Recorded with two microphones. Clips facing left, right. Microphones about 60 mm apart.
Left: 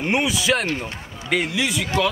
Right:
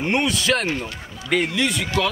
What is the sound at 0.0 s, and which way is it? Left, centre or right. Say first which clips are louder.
A man's voice: even; centre.